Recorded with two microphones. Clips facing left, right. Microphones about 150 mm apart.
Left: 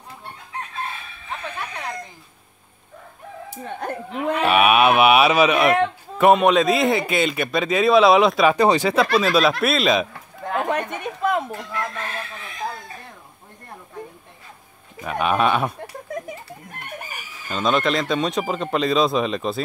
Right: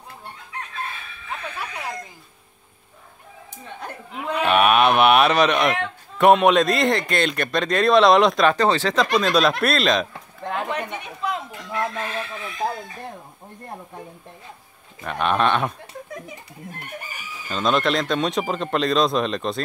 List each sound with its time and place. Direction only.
4.1 s a man's voice: 5° left (ahead or behind)
10.7 s a sound: 50° left (ahead or behind)
15.0 s a man's voice: 5° left (ahead or behind)
17.5 s a man's voice: centre (ahead or behind)